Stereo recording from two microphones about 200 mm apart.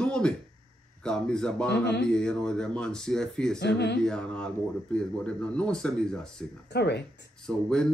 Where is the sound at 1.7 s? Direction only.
55° left (ahead or behind).